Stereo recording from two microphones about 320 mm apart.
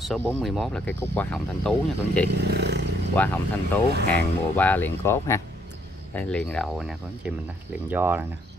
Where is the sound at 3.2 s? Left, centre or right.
Centre.